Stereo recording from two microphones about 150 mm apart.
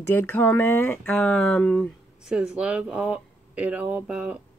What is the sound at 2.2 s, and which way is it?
Speech, 5° right (ahead or behind).